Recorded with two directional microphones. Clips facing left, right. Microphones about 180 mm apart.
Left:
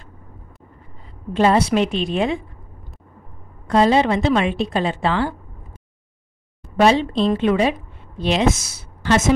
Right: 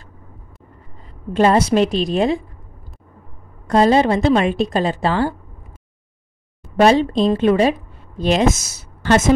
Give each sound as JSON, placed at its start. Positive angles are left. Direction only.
{"t": 1.3, "sound": "a woman's voice", "side_deg": -45}
{"t": 3.6, "sound": "a woman's voice", "side_deg": -40}
{"t": 6.8, "sound": "a woman's voice", "side_deg": -45}